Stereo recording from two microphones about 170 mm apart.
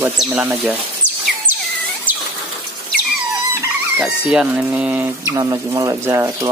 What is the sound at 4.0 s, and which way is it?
Speech, 5° right (ahead or behind).